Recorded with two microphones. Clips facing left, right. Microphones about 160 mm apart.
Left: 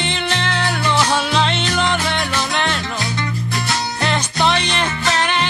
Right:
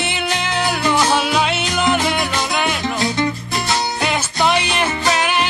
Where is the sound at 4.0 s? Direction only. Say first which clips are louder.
Even; centre (ahead or behind).